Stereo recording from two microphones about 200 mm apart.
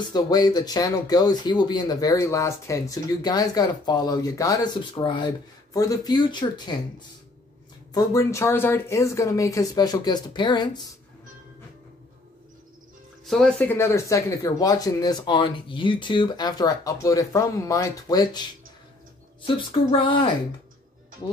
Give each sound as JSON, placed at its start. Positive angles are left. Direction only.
{"t": 0.1, "sound": "speech", "side_deg": 20}
{"t": 13.2, "sound": "speech", "side_deg": 0}
{"t": 19.4, "sound": "speech", "side_deg": 25}